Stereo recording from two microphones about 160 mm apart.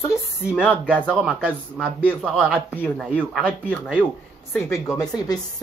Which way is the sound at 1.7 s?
10° left (ahead or behind).